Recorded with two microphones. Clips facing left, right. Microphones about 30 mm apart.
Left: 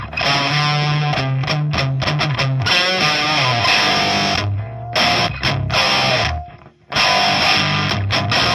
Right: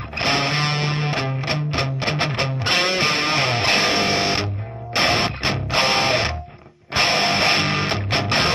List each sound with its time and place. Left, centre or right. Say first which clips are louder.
0.2 s music: left 3 dB; left
4.1 s music: left 3 dB; centre
4.9 s music: left 3 dB; left